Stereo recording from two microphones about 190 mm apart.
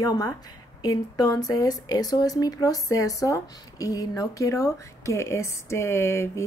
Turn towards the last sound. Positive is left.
turn(degrees=15)  # may be behind; listen again after turning